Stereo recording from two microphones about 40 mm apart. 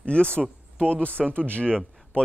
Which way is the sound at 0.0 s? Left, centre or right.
Left.